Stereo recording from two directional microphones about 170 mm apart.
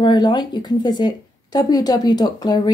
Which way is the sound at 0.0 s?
25° left (ahead or behind).